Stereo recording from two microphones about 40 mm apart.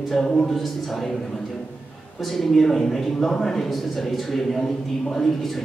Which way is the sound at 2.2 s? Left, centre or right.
Centre.